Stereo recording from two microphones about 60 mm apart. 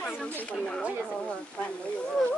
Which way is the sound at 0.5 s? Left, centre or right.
Centre.